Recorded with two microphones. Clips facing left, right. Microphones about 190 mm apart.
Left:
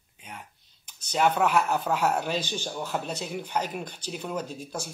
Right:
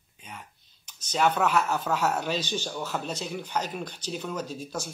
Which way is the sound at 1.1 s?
10° left (ahead or behind).